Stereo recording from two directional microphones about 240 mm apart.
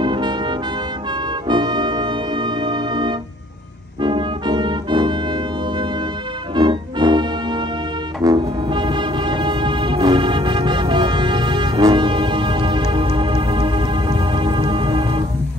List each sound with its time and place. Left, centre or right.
0.0 s brass instrument: centre
1.5 s music: centre
4.0 s organ: centre
6.5 s music: centre